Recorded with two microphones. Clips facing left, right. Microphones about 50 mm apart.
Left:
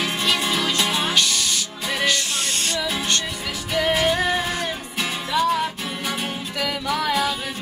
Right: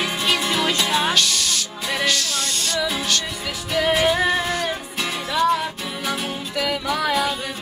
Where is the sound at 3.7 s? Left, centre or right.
Centre.